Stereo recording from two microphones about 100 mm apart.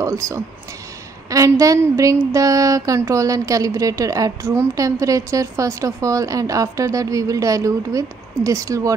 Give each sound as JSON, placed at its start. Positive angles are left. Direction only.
{"t": 0.0, "sound": "a woman's voice", "side_deg": -30}